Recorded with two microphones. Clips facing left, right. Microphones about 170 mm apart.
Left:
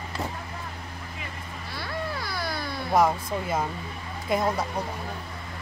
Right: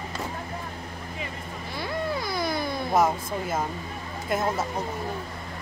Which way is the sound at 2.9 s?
5° right (ahead or behind).